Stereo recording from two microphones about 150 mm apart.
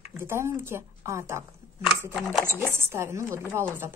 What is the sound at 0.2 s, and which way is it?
Speech, 15° right (ahead or behind).